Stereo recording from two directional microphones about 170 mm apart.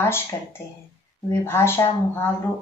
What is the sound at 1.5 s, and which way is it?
Speech, 15° left (ahead or behind).